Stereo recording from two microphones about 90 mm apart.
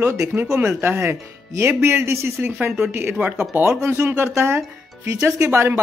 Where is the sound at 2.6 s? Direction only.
20° right (ahead or behind).